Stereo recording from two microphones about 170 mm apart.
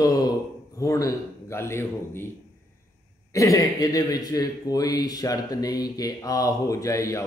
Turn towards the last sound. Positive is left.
turn(degrees=20)  # may be behind; listen again after turning